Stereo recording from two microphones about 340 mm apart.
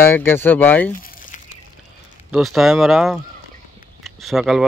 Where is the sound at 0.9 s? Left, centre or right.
Left.